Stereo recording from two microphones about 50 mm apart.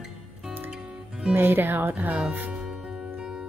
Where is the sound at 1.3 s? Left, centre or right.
Right.